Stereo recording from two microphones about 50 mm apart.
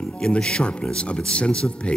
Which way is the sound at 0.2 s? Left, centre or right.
Centre.